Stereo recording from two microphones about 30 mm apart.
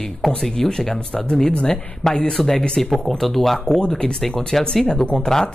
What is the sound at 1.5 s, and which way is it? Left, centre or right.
Speech, left.